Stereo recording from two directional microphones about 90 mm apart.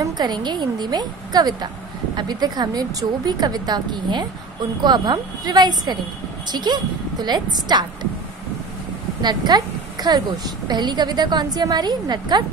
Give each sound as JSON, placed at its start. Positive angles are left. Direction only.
{"t": 0.0, "sound": "speech", "side_deg": -50}
{"t": 9.2, "sound": "speech", "side_deg": -50}